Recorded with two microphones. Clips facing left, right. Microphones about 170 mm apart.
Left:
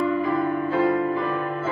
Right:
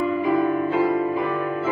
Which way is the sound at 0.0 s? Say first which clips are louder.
Right 2 dB; 20° right (ahead or behind).